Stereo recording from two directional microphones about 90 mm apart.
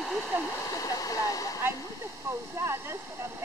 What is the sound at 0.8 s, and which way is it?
Waterfall, 40° left (ahead or behind).